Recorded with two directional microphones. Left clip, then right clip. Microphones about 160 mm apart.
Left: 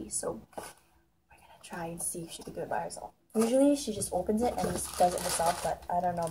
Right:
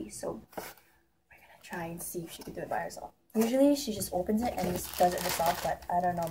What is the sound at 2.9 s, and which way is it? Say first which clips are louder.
Speech: even; 5° left (ahead or behind).